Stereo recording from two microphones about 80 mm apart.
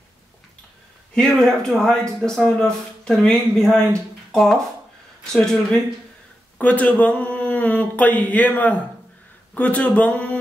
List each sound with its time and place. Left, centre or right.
1.1 s speech: centre
6.6 s speech: centre